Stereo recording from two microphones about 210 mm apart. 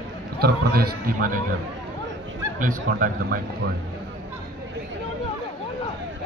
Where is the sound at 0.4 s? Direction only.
50° right (ahead or behind).